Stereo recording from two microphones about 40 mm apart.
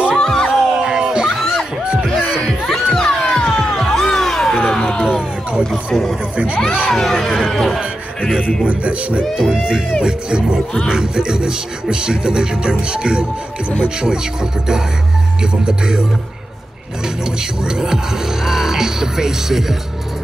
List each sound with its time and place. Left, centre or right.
0.1 s music: centre
0.5 s a sound: centre
2.7 s music: centre
4.6 s a sound: left
5.7 s speech: centre
8.6 s music: right
9.4 s speech: centre
10.0 s music: right
13.8 s speech: centre
15.6 s music: centre
17.6 s speech: centre